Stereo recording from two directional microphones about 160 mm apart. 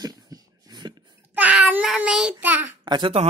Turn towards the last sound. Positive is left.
turn(degrees=-35)  # may be behind; listen again after turning